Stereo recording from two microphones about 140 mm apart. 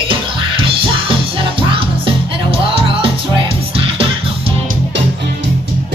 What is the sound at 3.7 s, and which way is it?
Music, 40° right (ahead or behind).